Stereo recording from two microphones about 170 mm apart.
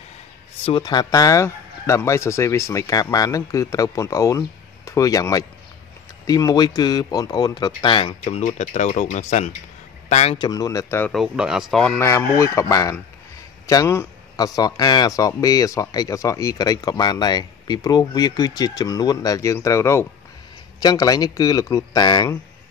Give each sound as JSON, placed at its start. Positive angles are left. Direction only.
{"t": 0.7, "sound": "speech", "side_deg": 25}
{"t": 8.2, "sound": "speech", "side_deg": 45}
{"t": 10.4, "sound": "speech", "side_deg": 20}
{"t": 11.1, "sound": "speech", "side_deg": 0}
{"t": 12.0, "sound": "speech", "side_deg": 15}